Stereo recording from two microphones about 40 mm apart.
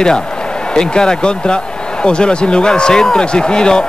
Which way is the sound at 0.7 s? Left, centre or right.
Centre.